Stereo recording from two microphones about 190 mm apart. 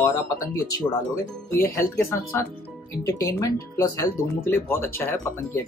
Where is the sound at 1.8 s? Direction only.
15° left (ahead or behind).